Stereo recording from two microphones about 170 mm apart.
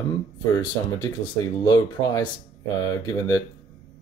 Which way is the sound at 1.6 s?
25° left (ahead or behind).